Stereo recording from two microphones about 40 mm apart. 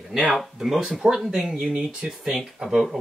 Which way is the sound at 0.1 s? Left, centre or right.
Centre.